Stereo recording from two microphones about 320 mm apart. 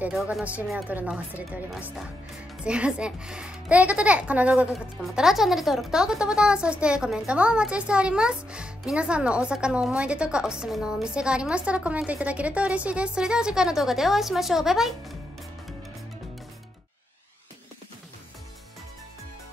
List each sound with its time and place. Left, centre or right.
0.0 s speech: centre